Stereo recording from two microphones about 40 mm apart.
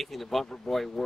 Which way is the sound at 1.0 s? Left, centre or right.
Centre.